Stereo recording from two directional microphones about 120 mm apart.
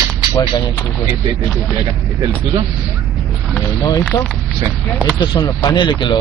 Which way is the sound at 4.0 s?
5° left (ahead or behind).